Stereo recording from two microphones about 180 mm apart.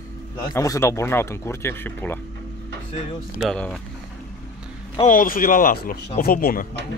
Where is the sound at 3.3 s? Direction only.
5° left (ahead or behind).